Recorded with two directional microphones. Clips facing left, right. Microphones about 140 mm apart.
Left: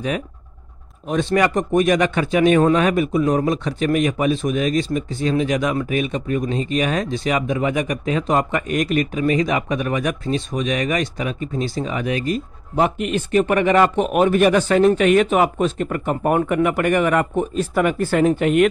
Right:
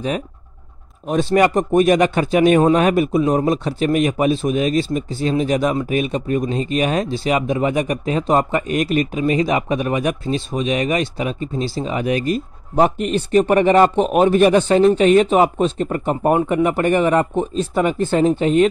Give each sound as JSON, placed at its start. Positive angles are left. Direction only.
{"t": 1.0, "sound": "speech", "side_deg": -35}